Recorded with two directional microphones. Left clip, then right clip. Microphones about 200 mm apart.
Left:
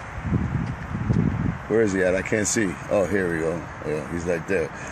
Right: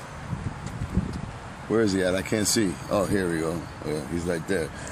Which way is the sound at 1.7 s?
Centre (ahead or behind).